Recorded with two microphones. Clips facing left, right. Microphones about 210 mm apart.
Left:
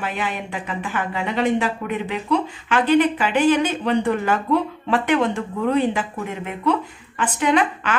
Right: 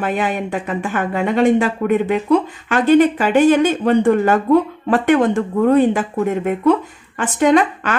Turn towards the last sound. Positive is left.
turn(degrees=-45)  # may be behind; listen again after turning